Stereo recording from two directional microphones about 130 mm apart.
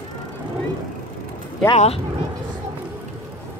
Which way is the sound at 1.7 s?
50° left (ahead or behind).